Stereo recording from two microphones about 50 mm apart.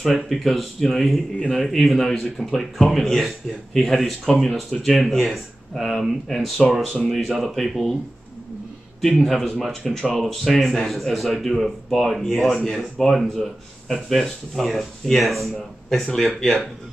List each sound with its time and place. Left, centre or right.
0.0 s speech: centre
9.0 s speech: centre
16.3 s speech: centre